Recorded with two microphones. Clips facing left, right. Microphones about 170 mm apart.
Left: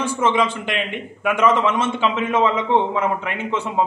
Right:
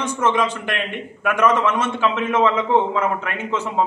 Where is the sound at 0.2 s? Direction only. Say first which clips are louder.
Even; 20° left (ahead or behind).